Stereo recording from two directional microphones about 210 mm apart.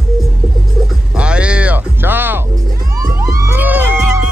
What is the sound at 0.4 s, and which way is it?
Hum, 5° right (ahead or behind).